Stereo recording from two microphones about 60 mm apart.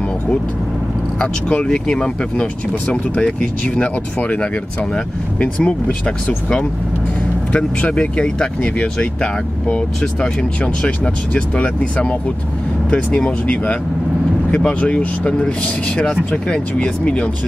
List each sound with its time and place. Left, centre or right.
1.2 s speech: centre
7.9 s speech: centre